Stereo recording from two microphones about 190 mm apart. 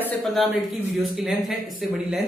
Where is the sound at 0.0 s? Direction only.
Centre (ahead or behind).